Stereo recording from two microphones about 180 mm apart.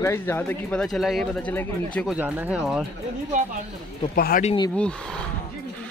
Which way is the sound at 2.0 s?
10° right (ahead or behind).